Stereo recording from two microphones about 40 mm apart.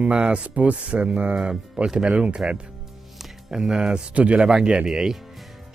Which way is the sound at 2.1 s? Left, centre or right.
Right.